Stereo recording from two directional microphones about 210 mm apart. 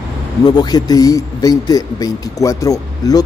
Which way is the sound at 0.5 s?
20° left (ahead or behind).